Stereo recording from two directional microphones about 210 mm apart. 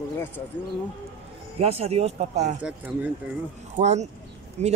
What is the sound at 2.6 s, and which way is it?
Speech, 5° right (ahead or behind).